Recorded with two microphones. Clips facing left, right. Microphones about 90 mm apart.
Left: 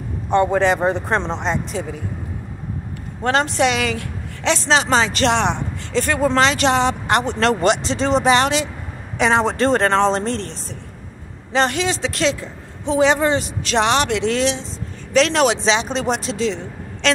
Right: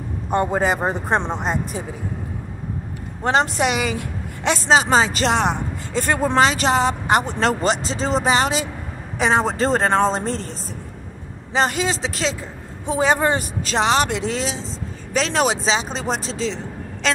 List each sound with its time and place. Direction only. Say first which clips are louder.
0.3 s speech: left 3 dB; 10° right (ahead or behind)
3.3 s a woman's voice: left 1 dB; 5° right (ahead or behind)
11.5 s a man's voice: left 1 dB; 5° right (ahead or behind)
13.1 s speech: left 1 dB; 45° right (ahead or behind)
13.7 s a woman's voice: left 1 dB; centre (ahead or behind)